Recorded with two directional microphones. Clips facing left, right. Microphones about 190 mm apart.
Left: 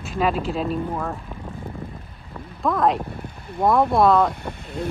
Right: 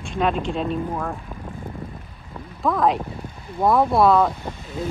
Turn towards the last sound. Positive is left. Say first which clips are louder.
# even
turn(degrees=0)  # may be behind; listen again after turning